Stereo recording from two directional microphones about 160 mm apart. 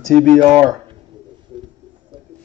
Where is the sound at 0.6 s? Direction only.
25° right (ahead or behind).